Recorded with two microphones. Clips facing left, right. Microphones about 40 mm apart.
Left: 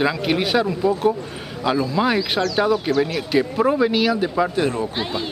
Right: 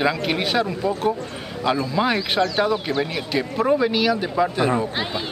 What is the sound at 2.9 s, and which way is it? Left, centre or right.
A man's voice, centre.